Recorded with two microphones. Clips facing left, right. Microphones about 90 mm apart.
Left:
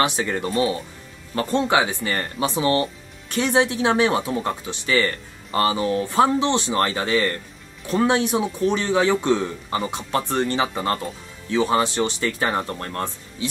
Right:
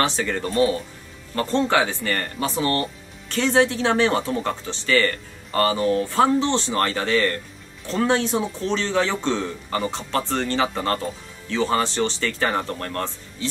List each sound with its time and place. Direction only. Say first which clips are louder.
0.0 s speech: left 1 dB; 15° left (ahead or behind)